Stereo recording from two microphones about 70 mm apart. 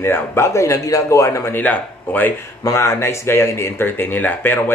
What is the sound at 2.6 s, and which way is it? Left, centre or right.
Speech, left.